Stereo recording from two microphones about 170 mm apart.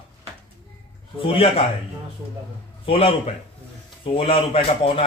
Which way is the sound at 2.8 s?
35° left (ahead or behind).